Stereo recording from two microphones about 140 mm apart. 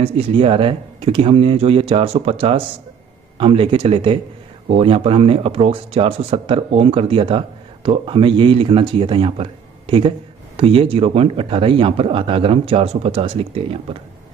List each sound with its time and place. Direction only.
0.0 s speech: 40° right (ahead or behind)